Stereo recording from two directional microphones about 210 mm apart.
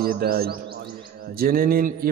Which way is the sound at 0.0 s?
45° right (ahead or behind).